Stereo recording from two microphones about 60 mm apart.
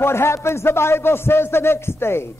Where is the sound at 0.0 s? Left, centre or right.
Left.